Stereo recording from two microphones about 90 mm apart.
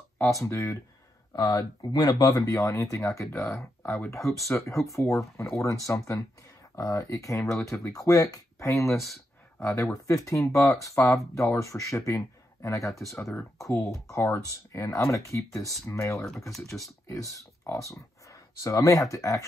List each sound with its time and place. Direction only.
0.3 s speech: 35° left (ahead or behind)
1.3 s speech: 45° left (ahead or behind)
8.9 s speech: centre (ahead or behind)
9.6 s speech: 35° left (ahead or behind)
16.4 s speech: centre (ahead or behind)
16.8 s speech: 35° left (ahead or behind)